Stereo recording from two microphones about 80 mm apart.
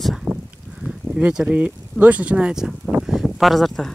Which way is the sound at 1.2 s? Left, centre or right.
Centre.